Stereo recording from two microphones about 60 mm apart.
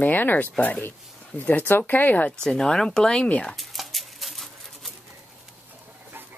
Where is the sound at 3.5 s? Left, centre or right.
Centre.